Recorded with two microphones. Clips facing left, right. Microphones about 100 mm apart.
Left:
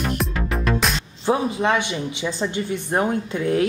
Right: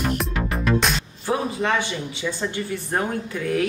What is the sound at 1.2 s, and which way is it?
Speech, 20° left (ahead or behind).